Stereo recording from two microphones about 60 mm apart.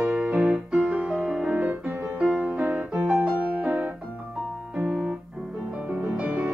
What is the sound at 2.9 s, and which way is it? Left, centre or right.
Music, right.